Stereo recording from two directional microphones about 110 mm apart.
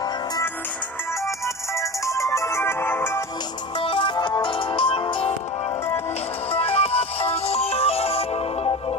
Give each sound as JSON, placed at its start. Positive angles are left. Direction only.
{"t": 1.8, "sound": "music", "side_deg": 30}
{"t": 3.8, "sound": "music", "side_deg": 55}
{"t": 6.5, "sound": "music", "side_deg": 60}